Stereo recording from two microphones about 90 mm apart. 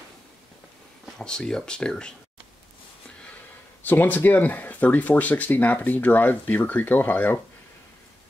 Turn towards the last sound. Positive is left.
turn(degrees=20)  # may be behind; listen again after turning